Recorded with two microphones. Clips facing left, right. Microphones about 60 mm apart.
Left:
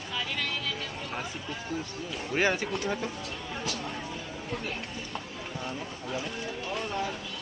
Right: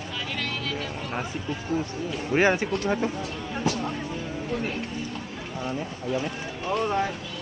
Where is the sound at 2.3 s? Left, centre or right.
Centre.